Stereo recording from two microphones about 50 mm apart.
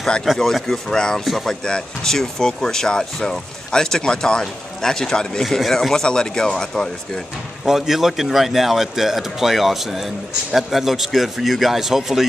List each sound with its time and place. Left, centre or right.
0.2 s a man's voice: centre
0.9 s speech: centre
1.2 s a man's voice: centre
1.5 s a man's voice: centre
7.6 s a man's voice: centre